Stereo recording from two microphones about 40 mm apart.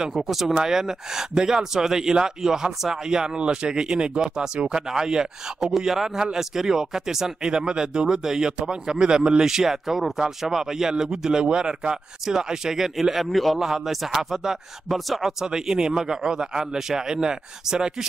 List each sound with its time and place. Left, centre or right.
0.0 s speech: centre
9.5 s speech: centre
13.6 s speech: centre
14.9 s speech: centre
15.4 s speech: centre